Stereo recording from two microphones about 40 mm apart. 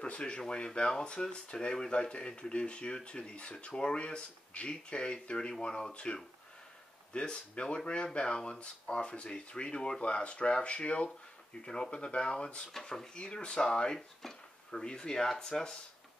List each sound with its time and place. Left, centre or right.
0.0 s speech: left
7.2 s speech: left
14.2 s speech: centre
14.7 s speech: centre